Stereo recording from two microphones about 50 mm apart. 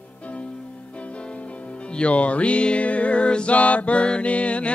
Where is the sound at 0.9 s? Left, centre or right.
Left.